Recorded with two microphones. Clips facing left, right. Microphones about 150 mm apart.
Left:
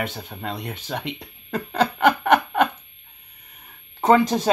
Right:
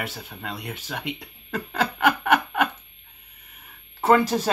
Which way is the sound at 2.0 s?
5° right (ahead or behind).